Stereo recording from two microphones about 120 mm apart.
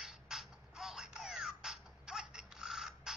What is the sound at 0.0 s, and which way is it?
Music, centre (ahead or behind).